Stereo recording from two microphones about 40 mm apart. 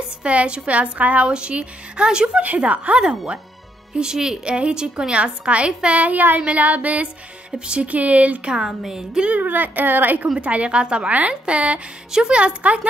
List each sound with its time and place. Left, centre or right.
0.2 s a woman's voice: right
2.4 s a woman's voice: right
3.9 s a woman's voice: centre
5.9 s a woman's voice: right
7.5 s a woman's voice: right
8.5 s a woman's voice: centre
9.2 s a woman's voice: right
10.4 s a woman's voice: right